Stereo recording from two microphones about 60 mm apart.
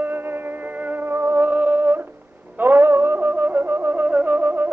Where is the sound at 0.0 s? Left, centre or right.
Right.